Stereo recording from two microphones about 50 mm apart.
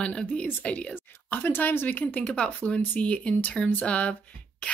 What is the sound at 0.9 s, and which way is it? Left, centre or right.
Speech, left.